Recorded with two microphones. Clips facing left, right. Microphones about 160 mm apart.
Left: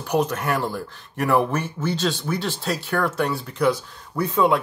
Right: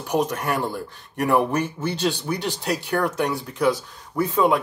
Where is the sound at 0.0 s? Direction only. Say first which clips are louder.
Left 1 dB; 15° right (ahead or behind).